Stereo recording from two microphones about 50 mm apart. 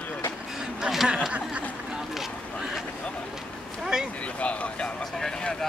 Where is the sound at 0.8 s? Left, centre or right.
Centre.